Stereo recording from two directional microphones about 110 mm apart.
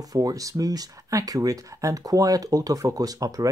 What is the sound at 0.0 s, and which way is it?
Speech, 35° right (ahead or behind).